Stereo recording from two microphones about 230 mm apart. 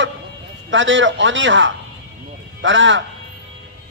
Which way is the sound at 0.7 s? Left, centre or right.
Right.